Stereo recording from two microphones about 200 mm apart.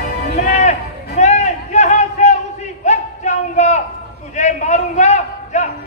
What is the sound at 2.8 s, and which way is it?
Music, 35° left (ahead or behind).